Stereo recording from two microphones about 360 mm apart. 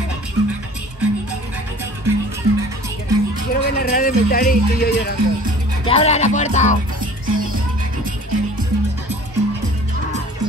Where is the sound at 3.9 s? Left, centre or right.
Left.